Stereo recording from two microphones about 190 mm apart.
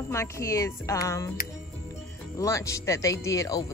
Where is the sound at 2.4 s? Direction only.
15° left (ahead or behind).